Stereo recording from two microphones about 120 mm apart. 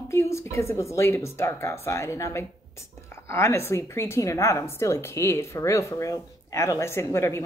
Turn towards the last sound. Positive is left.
turn(degrees=25)  # may be behind; listen again after turning